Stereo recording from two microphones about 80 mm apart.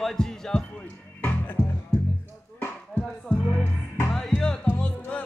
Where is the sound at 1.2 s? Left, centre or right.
Left.